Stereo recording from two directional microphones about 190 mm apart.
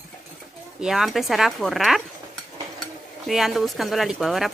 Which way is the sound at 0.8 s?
Centre (ahead or behind).